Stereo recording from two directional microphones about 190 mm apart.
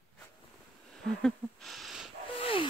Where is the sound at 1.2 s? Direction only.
5° left (ahead or behind).